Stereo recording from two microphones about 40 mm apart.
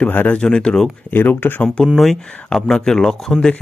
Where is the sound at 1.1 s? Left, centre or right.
Left.